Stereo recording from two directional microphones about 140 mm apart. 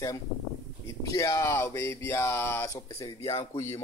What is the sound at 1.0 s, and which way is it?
Speech, 25° left (ahead or behind).